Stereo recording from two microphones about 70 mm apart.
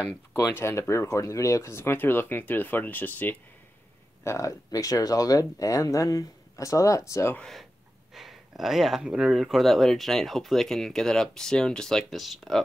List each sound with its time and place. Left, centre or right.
0.6 s speech: left
4.2 s speech: left
8.1 s a sound: centre
9.2 s speech: centre